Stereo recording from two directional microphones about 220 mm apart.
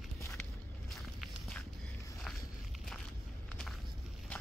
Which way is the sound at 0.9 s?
Centre (ahead or behind).